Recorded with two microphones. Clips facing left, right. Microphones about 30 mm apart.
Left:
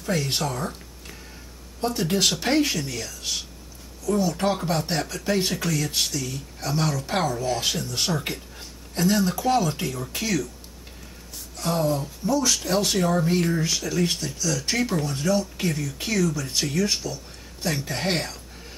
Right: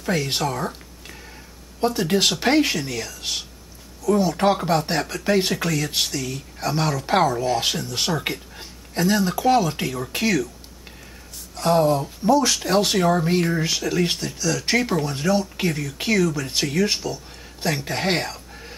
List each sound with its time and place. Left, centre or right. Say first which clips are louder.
0.1 s speech: right 3 dB; centre
11.5 s speech: right 6 dB; right